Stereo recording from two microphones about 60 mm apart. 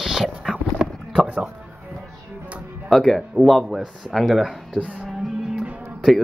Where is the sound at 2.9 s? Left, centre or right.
Centre.